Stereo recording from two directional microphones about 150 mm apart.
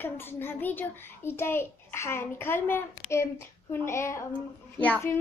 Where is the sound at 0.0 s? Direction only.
15° left (ahead or behind).